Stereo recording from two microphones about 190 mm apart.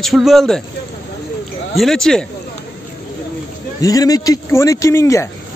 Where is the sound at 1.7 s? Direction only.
Centre (ahead or behind).